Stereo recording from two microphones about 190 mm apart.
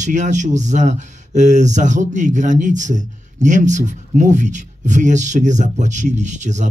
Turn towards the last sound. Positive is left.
turn(degrees=-40)  # may be behind; listen again after turning